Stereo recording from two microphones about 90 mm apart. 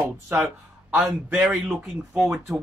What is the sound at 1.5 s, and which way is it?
Speech, 5° right (ahead or behind).